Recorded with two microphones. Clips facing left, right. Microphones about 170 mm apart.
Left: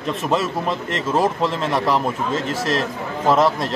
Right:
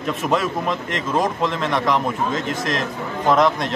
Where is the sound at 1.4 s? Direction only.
35° left (ahead or behind).